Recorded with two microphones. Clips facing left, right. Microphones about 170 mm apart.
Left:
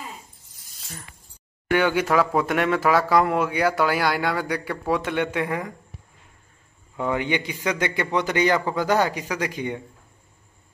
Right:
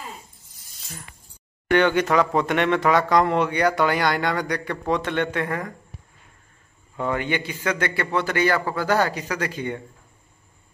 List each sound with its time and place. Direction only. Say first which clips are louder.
1.7 s speech: right 2 dB; 5° left (ahead or behind)
7.0 s a man's voice: left 1 dB; 15° left (ahead or behind)